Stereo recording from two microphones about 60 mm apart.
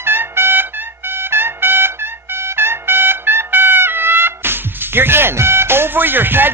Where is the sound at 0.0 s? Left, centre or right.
Right.